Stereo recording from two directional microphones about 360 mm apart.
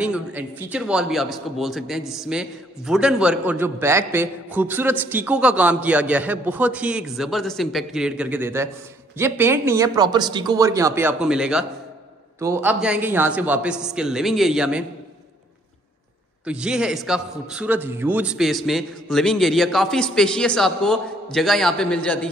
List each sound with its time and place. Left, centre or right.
0.0 s a man's voice: centre
16.4 s a man's voice: centre